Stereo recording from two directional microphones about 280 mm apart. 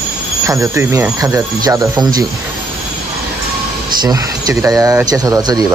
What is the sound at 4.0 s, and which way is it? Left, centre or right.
Speech, centre.